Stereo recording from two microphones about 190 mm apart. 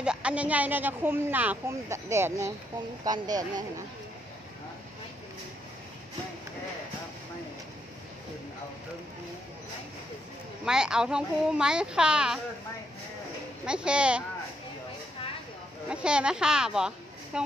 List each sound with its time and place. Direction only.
0.0 s speech: 5° right (ahead or behind); by 3.8 s 20° right (ahead or behind)
10.6 s speech: 5° right (ahead or behind)
13.7 s speech: 5° right (ahead or behind)
15.9 s speech: 5° right (ahead or behind)